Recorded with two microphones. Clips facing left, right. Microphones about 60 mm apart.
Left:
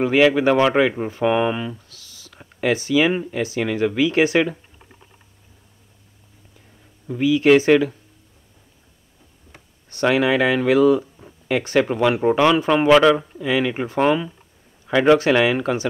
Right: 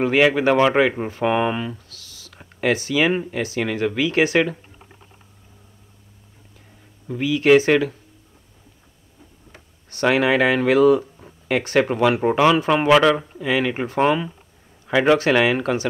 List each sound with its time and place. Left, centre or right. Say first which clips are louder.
0.0 s speech: left 1 dB; centre
2.0 s whispering: right 1 dB; right
2.3 s a sound: even; centre
3.1 s speech: even; centre
3.5 s speech: left 2 dB; centre
7.1 s speech: left 1 dB; centre
10.0 s speech: even; centre
10.9 s a sound: right 1 dB; centre
11.9 s speech: even; centre
15.6 s speech: even; centre